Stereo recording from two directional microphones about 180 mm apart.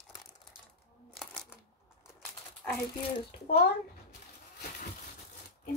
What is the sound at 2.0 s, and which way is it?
Bird, 5° left (ahead or behind).